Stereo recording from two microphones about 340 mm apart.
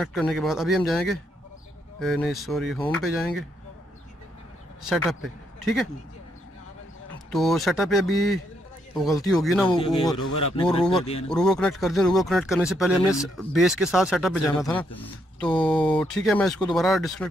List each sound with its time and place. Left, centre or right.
0.0 s speech: centre
4.8 s speech: centre
7.2 s speech: centre
10.1 s speech: left
10.5 s speech: centre
11.2 s speech: centre
16.0 s speech: centre